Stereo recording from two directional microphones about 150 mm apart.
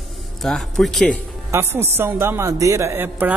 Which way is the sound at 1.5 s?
15° right (ahead or behind).